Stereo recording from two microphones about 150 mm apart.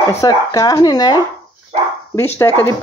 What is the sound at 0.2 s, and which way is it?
Speech, 25° left (ahead or behind).